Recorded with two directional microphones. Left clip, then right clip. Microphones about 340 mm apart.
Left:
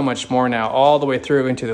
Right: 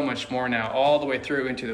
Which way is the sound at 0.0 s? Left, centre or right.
Centre.